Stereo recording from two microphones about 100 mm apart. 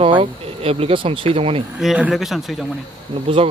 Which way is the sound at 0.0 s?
70° right (ahead or behind).